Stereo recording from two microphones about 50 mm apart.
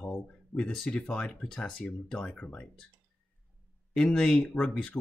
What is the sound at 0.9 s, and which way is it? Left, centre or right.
Speech, left.